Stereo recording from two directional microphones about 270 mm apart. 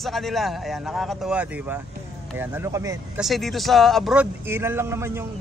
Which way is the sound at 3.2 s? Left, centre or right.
Centre.